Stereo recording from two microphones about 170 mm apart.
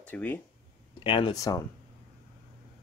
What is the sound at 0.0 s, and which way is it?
Speech, 10° left (ahead or behind).